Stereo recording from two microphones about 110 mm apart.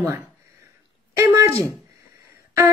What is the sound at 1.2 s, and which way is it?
Speech, 30° right (ahead or behind).